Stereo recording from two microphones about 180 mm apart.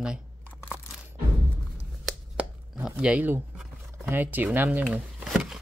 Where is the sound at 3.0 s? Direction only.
5° right (ahead or behind).